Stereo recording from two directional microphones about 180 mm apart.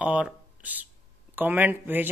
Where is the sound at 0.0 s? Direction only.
5° right (ahead or behind).